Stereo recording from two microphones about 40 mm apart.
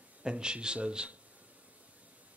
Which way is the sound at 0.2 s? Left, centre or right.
Right.